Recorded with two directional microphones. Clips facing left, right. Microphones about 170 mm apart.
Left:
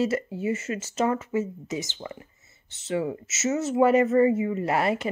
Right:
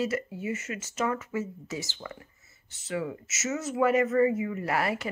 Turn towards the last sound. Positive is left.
turn(degrees=25)  # may be behind; listen again after turning